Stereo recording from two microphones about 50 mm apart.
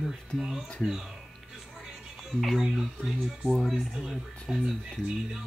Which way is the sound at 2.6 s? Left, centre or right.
Centre.